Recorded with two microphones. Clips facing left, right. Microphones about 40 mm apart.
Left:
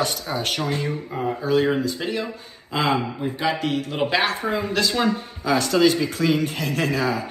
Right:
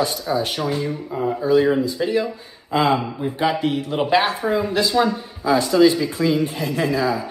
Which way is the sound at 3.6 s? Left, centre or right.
Right.